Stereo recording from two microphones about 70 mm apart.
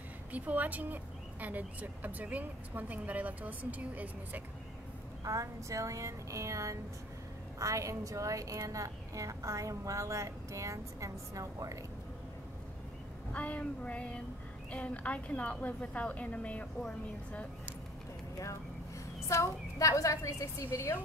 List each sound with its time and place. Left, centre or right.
0.3 s speech: right
5.2 s a woman's voice: right
13.3 s a woman's voice: centre
19.2 s a woman's voice: left